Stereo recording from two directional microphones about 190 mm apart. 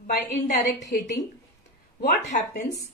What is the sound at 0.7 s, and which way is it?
Speech, 65° left (ahead or behind).